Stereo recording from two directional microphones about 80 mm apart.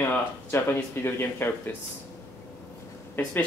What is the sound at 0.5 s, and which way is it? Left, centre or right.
Speech, left.